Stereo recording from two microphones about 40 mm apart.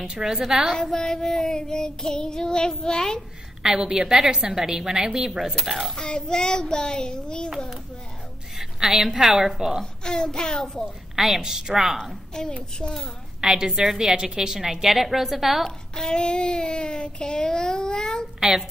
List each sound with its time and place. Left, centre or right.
0.0 s a woman's voice: centre
0.9 s speech: centre
3.6 s a woman's voice: centre
5.9 s speech: left
8.9 s a woman's voice: centre
10.0 s speech: centre
11.1 s a woman's voice: centre
12.3 s speech: centre
13.4 s a woman's voice: centre
15.9 s speech: centre